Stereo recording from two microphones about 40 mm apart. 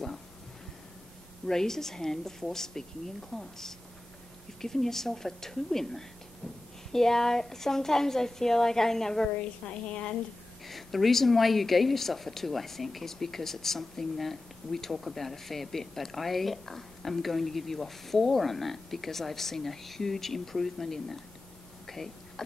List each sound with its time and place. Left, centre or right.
1.4 s a woman's voice: centre
6.4 s a woman's voice: left
6.9 s a woman's voice: centre
9.4 s a woman's voice: left
10.7 s a woman's voice: centre
21.8 s a sound: centre